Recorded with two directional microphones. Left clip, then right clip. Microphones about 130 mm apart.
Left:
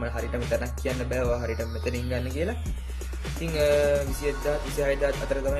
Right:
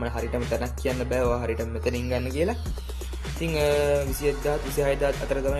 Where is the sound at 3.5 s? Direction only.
30° right (ahead or behind).